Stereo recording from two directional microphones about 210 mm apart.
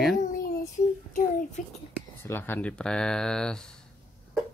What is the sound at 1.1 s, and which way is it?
Speech, 40° left (ahead or behind).